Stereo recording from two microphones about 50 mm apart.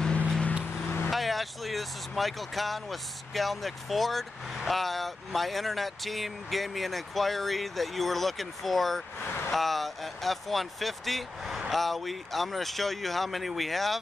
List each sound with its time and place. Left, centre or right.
0.7 s vehicle: left
1.1 s speech: centre